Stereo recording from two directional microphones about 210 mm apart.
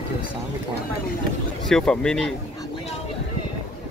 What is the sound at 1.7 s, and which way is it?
Speech, 5° left (ahead or behind).